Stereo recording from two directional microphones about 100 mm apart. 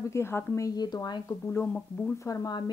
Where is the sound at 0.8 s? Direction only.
45° left (ahead or behind).